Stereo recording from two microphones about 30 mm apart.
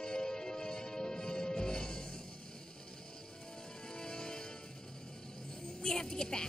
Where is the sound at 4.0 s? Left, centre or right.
Left.